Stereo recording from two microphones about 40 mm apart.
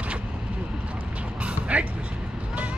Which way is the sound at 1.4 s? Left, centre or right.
Right.